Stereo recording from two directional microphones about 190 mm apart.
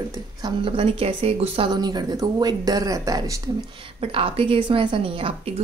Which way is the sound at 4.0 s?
30° right (ahead or behind).